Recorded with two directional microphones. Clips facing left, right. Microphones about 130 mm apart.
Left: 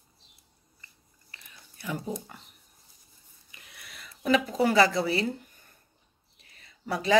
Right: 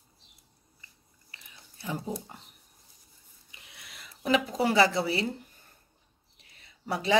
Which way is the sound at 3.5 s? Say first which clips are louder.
Left 1 dB; 20° right (ahead or behind).